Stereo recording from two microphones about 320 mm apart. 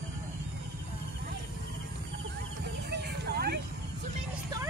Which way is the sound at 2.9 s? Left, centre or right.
Right.